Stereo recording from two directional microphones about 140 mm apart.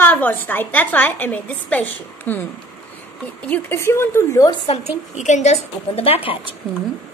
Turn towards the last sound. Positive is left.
turn(degrees=0)  # may be behind; listen again after turning